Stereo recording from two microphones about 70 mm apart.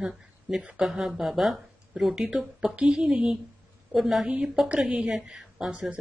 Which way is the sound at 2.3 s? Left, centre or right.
Centre.